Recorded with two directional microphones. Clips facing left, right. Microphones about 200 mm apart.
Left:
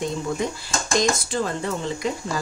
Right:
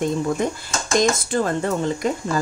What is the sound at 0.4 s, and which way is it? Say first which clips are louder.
Speech: right 3 dB; 50° right (ahead or behind).